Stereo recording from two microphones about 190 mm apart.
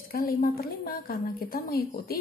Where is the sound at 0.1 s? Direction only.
50° left (ahead or behind).